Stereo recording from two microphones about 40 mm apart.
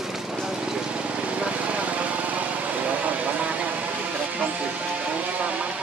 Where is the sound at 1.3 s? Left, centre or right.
Right.